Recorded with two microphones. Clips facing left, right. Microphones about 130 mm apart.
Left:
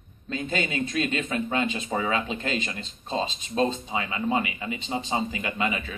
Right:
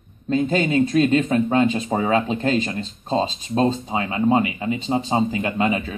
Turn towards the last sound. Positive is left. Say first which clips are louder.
# right 7 dB
turn(degrees=-35)  # may be behind; listen again after turning